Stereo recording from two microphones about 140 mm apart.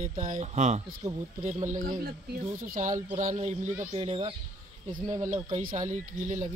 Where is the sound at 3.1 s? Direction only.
60° right (ahead or behind).